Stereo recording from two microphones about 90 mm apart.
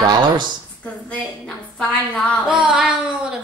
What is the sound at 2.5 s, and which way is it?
Speech, 10° right (ahead or behind).